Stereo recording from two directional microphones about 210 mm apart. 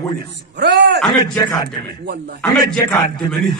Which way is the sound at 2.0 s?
55° right (ahead or behind).